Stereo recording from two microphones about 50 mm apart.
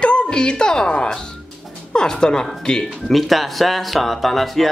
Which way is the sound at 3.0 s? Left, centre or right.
Centre.